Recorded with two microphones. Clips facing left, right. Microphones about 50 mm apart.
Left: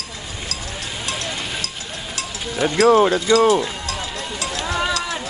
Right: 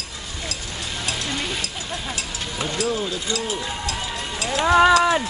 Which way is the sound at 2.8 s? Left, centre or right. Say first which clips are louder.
Left 13 dB; left.